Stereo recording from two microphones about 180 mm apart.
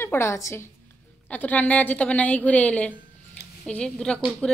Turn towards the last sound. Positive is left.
turn(degrees=5)  # may be behind; listen again after turning